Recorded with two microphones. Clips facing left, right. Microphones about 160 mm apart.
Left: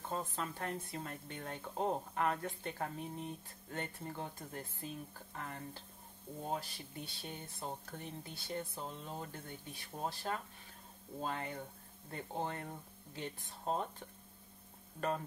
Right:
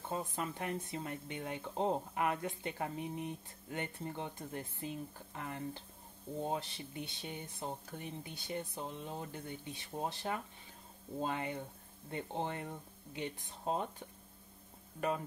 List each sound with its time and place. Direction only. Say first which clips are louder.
0.1 s speech: right 2 dB; 15° right (ahead or behind)